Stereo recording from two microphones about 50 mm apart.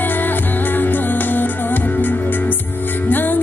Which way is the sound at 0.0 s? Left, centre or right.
Left.